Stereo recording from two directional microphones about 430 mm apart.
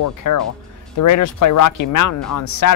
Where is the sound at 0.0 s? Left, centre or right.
Left.